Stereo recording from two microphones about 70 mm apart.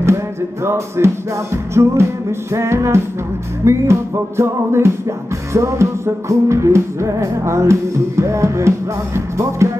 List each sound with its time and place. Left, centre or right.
0.7 s music: right